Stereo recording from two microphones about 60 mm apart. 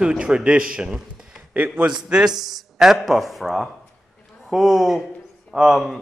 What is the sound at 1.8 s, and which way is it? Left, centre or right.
A man's voice, centre.